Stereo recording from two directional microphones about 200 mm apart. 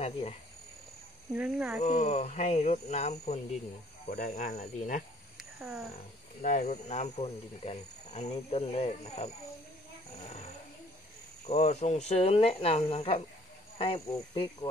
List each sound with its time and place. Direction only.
0.0 s speech: 30° left (ahead or behind)
1.3 s speech: 10° right (ahead or behind)
1.8 s speech: 35° left (ahead or behind)
5.4 s a sound: centre (ahead or behind)
6.4 s speech: 35° left (ahead or behind)
10.1 s snoring: 30° left (ahead or behind)
11.4 s speech: 35° left (ahead or behind)